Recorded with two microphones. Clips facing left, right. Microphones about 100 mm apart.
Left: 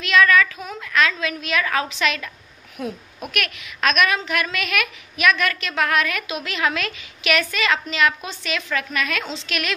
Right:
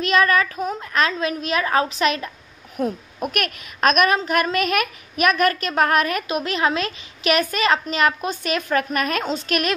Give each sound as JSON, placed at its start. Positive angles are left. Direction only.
{"t": 0.0, "sound": "a child's voice", "side_deg": -40}